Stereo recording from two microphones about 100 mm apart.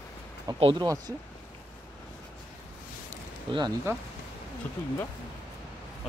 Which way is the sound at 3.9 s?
25° right (ahead or behind).